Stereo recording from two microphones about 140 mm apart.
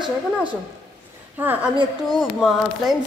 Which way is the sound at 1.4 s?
10° right (ahead or behind).